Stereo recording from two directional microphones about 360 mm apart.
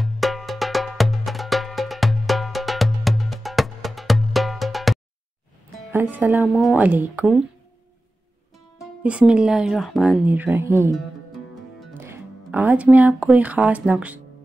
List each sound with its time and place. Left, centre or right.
0.0 s music: centre
5.9 s speech: centre
8.7 s speech: centre